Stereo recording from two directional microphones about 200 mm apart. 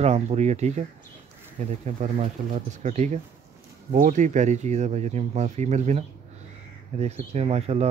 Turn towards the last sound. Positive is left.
turn(degrees=-30)  # may be behind; listen again after turning